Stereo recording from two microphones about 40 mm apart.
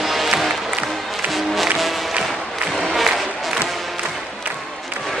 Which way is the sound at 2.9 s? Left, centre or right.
Centre.